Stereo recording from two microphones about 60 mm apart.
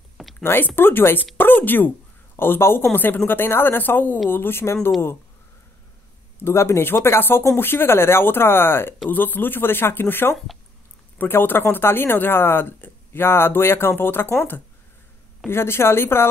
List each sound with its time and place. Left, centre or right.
0.4 s speech: left
6.4 s a woman's voice: left
10.3 s speech: centre
11.1 s speech: left
15.4 s a woman's voice: left